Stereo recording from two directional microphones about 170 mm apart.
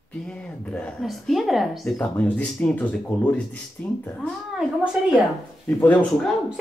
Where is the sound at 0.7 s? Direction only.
5° left (ahead or behind).